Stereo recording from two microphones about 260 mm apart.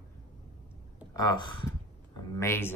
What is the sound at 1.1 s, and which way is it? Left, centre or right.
Speech, centre.